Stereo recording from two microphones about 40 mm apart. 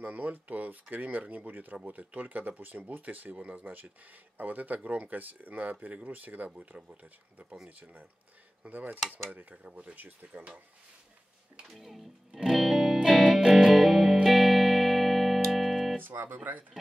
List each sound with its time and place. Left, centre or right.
0.0 s speech: right
8.6 s speech: right
11.7 s speech: centre
12.3 s music: centre
12.5 s music: centre
16.0 s music: right